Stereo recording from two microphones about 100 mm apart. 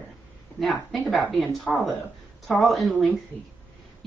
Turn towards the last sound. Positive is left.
turn(degrees=0)  # may be behind; listen again after turning